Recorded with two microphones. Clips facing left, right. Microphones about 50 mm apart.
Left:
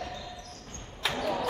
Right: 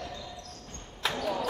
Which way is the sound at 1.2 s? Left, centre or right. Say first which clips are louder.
Left 2 dB; centre.